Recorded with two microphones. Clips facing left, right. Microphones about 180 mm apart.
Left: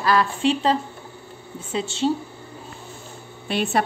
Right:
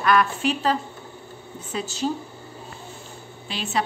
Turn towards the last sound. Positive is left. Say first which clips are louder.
# left 8 dB
turn(degrees=60)  # may be behind; listen again after turning